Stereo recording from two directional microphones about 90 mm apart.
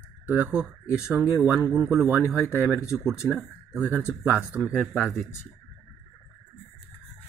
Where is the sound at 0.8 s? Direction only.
30° left (ahead or behind).